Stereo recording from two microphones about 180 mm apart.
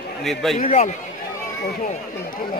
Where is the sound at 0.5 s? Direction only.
40° left (ahead or behind).